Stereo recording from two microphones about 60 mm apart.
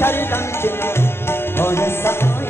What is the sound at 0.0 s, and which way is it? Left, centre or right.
Tabla, left.